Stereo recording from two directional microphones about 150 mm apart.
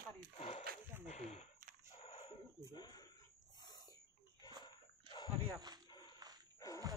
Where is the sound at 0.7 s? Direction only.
80° right.